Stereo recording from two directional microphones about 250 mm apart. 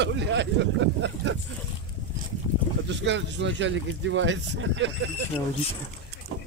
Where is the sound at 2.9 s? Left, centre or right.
Right.